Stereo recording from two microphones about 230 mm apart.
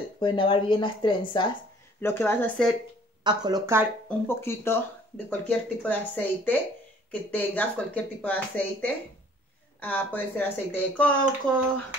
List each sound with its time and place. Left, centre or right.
0.2 s speech: left
2.0 s speech: centre
3.3 s speech: centre
4.3 s speech: centre